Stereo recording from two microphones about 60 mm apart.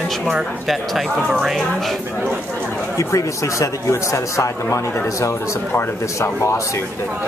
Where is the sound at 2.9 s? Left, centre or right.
Left.